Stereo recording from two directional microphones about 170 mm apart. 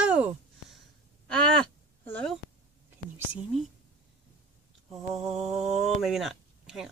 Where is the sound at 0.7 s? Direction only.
5° left (ahead or behind).